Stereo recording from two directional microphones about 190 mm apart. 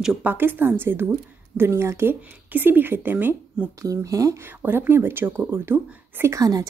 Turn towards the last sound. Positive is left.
turn(degrees=-20)  # may be behind; listen again after turning